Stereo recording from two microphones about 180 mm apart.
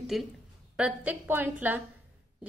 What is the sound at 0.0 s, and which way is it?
A woman's voice, centre (ahead or behind).